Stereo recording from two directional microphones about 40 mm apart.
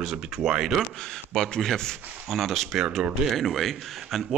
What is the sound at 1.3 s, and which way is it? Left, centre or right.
A man's voice, centre.